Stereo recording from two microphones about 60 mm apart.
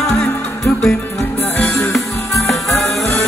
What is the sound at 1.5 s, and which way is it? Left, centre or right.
Music, left.